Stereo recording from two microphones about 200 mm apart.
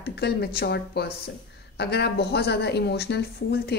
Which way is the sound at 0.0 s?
50° left (ahead or behind).